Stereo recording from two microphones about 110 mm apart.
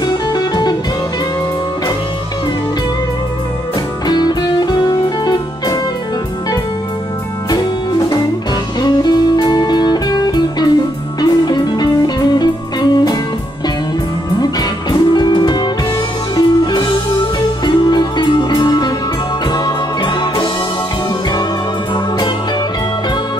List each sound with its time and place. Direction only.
0.0 s music: 40° left (ahead or behind)
4.1 s music: 40° left (ahead or behind)
8.8 s music: 40° left (ahead or behind)
14.4 s music: 35° left (ahead or behind)